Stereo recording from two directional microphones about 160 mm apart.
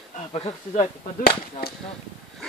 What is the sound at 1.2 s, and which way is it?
Speech, 70° left (ahead or behind).